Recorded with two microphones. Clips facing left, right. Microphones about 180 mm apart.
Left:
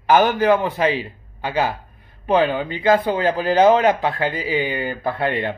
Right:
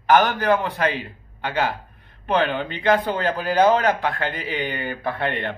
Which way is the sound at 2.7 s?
5° left (ahead or behind).